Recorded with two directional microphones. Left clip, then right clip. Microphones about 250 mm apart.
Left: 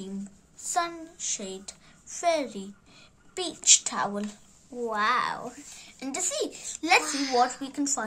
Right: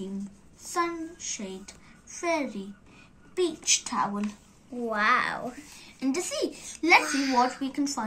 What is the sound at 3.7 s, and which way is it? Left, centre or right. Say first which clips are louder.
Speech: left 5 dB; left.